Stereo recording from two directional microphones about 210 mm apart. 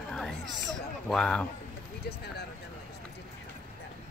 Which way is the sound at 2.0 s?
50° left (ahead or behind).